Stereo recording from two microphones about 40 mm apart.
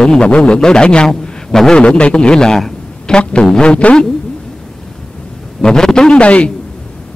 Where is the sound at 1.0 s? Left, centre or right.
Centre.